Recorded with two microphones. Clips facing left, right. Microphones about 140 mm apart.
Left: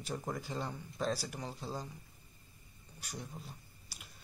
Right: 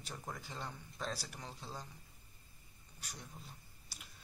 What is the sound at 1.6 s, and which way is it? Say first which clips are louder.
Speech: left 7 dB; 35° left (ahead or behind).